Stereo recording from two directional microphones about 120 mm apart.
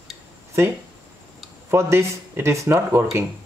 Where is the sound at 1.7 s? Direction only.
25° right (ahead or behind).